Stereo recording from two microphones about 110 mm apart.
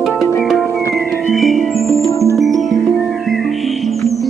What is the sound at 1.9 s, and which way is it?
Music, 30° left (ahead or behind).